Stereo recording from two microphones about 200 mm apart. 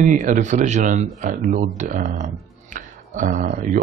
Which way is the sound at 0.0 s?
40° right (ahead or behind).